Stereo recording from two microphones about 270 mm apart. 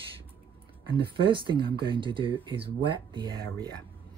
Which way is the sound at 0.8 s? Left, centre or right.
Centre.